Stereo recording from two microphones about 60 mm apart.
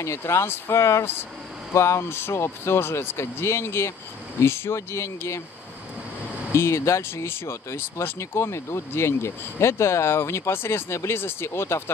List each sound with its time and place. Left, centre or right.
0.0 s speech: left
6.5 s speech: left